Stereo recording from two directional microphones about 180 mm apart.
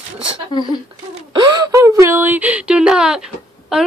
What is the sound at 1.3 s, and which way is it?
Speech, 25° right (ahead or behind).